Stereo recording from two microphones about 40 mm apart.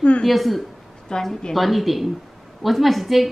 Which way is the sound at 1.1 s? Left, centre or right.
Centre.